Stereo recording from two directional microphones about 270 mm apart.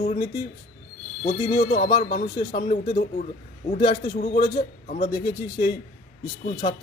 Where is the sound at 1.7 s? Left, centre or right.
Left.